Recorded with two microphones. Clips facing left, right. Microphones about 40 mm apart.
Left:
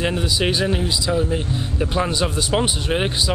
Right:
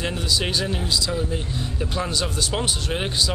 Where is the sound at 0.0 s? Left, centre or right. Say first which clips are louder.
Left 4 dB; centre.